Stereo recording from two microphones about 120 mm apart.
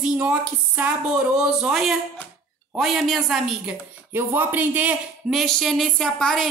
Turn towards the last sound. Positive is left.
turn(degrees=5)  # may be behind; listen again after turning